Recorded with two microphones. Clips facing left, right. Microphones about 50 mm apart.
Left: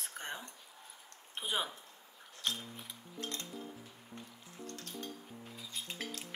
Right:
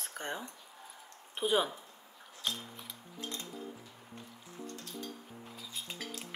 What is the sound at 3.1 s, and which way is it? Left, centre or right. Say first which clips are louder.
Music: even; left.